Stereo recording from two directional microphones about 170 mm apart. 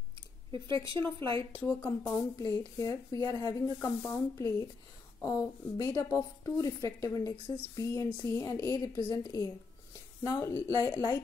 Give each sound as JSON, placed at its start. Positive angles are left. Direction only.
{"t": 0.7, "sound": "a woman's voice", "side_deg": 15}